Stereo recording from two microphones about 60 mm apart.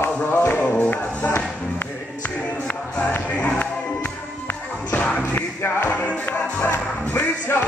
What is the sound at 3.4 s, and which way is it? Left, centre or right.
Music, left.